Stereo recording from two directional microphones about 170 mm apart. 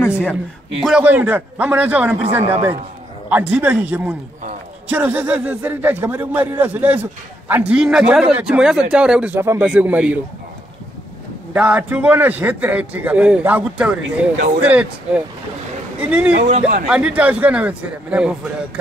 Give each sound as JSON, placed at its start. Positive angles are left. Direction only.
{"t": 0.0, "sound": "a man's voice", "side_deg": 10}
{"t": 0.7, "sound": "a man's voice", "side_deg": -5}
{"t": 11.5, "sound": "a man's voice", "side_deg": -10}
{"t": 16.3, "sound": "speech", "side_deg": -40}
{"t": 16.9, "sound": "a man's voice", "side_deg": -5}